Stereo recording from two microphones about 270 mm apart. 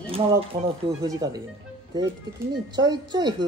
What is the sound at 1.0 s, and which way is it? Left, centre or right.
Speech, centre.